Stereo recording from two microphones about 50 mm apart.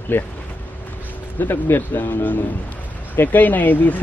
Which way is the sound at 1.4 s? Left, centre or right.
Left.